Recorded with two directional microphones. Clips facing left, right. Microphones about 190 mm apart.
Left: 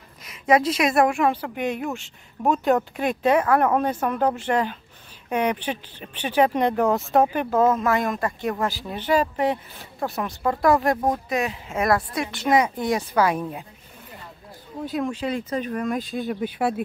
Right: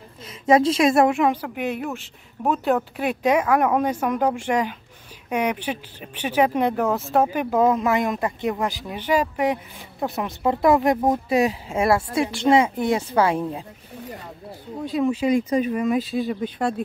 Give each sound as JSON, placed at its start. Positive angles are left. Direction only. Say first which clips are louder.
{"t": 0.2, "sound": "speech", "louder": "right 2 dB", "side_deg": -25}
{"t": 7.5, "sound": "speech", "louder": "right 1 dB", "side_deg": -15}
{"t": 11.1, "sound": "speech", "louder": "right 4 dB", "side_deg": -30}
{"t": 14.9, "sound": "speech", "louder": "right 6 dB", "side_deg": -5}